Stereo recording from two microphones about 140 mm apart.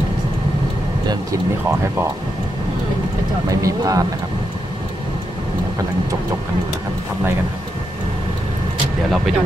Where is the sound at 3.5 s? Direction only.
25° right (ahead or behind).